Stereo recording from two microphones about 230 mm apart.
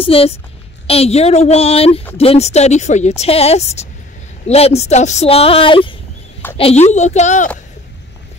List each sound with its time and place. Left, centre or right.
0.0 s speech: left